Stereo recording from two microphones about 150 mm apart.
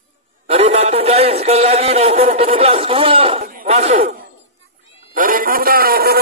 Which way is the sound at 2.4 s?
40° right (ahead or behind).